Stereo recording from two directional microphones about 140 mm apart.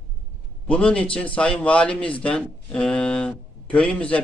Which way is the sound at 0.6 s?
10° left (ahead or behind).